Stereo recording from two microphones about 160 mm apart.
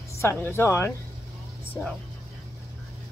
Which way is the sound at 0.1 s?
15° left (ahead or behind).